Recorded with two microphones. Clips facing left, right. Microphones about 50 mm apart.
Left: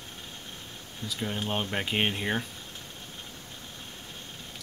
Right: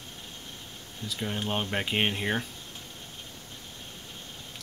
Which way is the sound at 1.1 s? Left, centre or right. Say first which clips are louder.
Even; centre.